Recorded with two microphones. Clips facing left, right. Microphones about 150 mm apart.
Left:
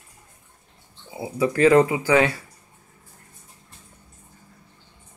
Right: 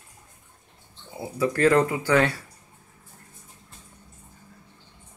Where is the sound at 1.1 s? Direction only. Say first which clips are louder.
Left 2 dB; 10° left (ahead or behind).